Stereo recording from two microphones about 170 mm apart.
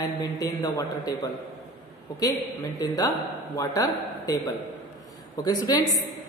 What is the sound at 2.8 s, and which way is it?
Speech, 20° left (ahead or behind).